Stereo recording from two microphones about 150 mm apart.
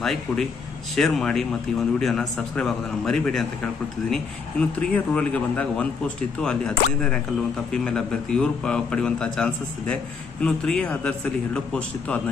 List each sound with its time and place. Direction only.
0.0 s a man's voice: centre (ahead or behind)